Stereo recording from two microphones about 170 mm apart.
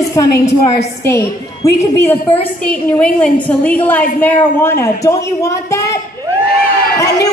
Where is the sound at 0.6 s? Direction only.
20° left (ahead or behind).